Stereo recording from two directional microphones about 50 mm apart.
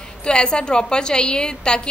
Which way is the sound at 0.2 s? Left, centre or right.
Centre.